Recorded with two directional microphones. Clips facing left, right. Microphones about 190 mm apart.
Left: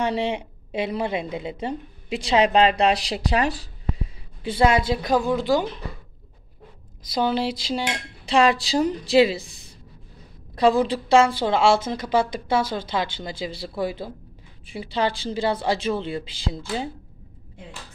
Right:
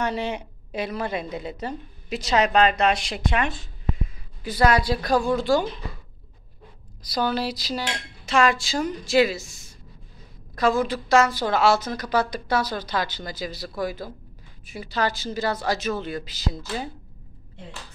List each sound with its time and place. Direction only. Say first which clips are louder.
0.0 s a woman's voice: left 3 dB; 25° left (ahead or behind)
7.1 s cutlery: left 2 dB; 25° left (ahead or behind)
10.5 s a woman's voice: left 3 dB; 30° left (ahead or behind)